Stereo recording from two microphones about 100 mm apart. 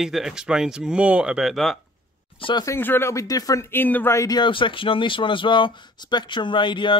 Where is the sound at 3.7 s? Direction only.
20° left (ahead or behind).